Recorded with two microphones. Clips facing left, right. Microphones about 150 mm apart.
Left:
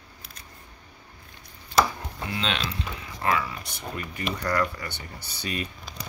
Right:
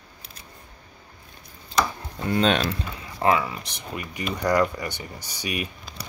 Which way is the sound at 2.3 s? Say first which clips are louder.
Right 9 dB; 45° right (ahead or behind).